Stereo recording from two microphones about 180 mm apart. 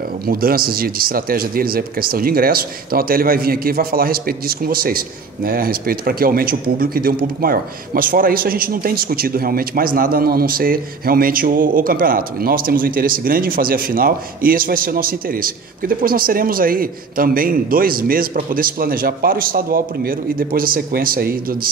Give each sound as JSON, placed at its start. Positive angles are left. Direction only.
{"t": 0.3, "sound": "a man's voice", "side_deg": -55}